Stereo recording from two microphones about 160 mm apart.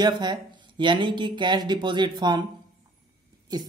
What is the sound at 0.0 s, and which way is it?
Speech, 25° right (ahead or behind).